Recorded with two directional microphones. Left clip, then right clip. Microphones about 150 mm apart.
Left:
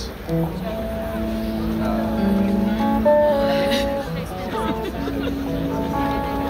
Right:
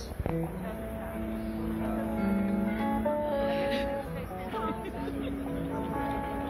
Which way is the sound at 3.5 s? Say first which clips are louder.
Left 10 dB; 40° left (ahead or behind).